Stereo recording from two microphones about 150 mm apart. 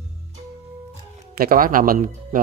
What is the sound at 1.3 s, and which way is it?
Speech, 75° right (ahead or behind).